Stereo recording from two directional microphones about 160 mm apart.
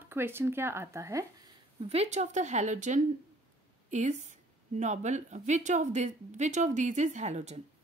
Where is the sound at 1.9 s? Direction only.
45° right (ahead or behind).